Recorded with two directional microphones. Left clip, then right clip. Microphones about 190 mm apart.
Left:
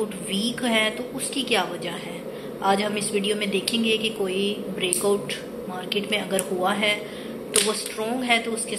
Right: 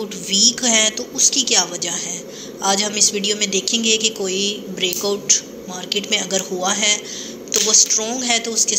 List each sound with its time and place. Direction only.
0.3 s a woman's voice: 40° right (ahead or behind)